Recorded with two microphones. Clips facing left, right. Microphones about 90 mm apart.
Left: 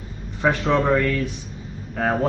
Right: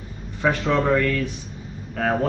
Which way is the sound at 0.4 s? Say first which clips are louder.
Left 1 dB; 20° left (ahead or behind).